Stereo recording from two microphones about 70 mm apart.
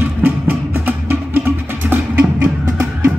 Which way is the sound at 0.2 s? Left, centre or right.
Right.